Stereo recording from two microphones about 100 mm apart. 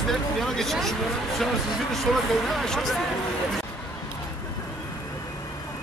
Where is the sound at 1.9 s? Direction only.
5° left (ahead or behind).